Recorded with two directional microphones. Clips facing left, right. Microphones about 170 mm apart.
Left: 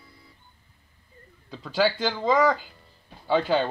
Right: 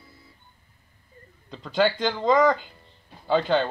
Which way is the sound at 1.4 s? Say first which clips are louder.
Right 1 dB; 5° left (ahead or behind).